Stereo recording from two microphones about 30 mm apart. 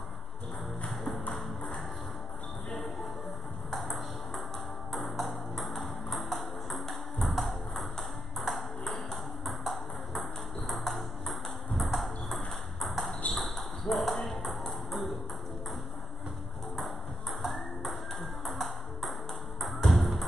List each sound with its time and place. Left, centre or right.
0.8 s music: centre
3.8 s ping: centre
6.9 s music: centre
8.4 s ping: centre
16.7 s ping: centre
19.9 s music: centre